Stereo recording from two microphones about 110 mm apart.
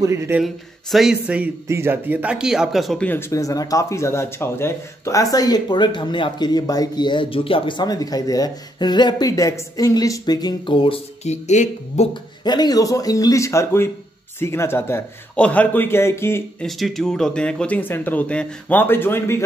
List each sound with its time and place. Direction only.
0.0 s speech: 25° right (ahead or behind)
0.4 s speech: centre (ahead or behind)
1.7 s speech: 20° right (ahead or behind); by 3.0 s centre (ahead or behind)
3.0 s speech: 20° left (ahead or behind); by 11.0 s 50° left (ahead or behind)
11.2 s speech: 90° left
12.1 s a man's voice: 40° left (ahead or behind); by 15.0 s 20° left (ahead or behind)
15.3 s a man's voice: 10° left (ahead or behind)
16.5 s speech: centre (ahead or behind); by 19.4 s 20° left (ahead or behind)